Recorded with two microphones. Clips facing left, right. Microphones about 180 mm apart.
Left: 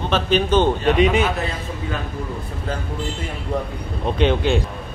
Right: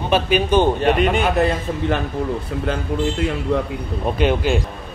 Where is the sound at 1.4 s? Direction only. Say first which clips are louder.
Right 8 dB; 70° right (ahead or behind).